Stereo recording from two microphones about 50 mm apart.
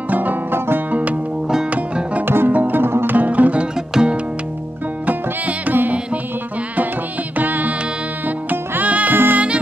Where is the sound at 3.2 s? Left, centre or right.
Right.